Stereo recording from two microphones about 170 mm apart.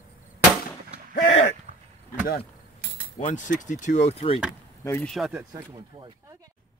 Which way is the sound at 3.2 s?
45° left (ahead or behind).